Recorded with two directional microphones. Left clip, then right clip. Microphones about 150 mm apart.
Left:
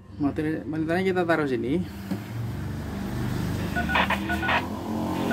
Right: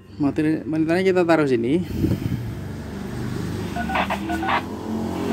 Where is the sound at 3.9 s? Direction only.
15° left (ahead or behind).